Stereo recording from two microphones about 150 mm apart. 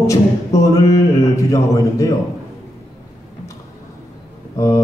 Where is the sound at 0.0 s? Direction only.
20° left (ahead or behind).